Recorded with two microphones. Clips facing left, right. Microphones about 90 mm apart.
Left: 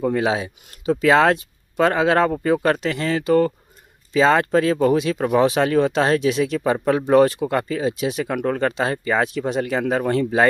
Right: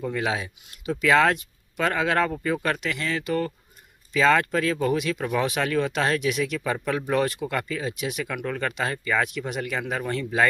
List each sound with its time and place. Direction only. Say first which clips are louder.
0.0 s speech: left 7 dB; 40° left (ahead or behind)